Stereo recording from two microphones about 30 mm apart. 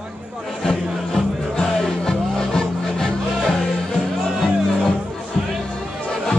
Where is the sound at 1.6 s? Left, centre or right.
Left.